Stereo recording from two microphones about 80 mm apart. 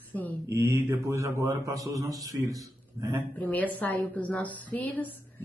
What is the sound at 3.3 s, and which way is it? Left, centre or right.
Speech, centre.